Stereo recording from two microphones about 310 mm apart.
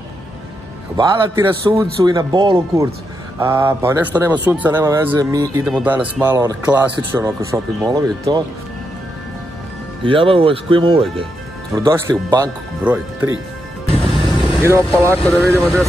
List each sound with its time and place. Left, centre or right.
0.9 s speech: centre
10.0 s speech: centre
15.6 s speech: centre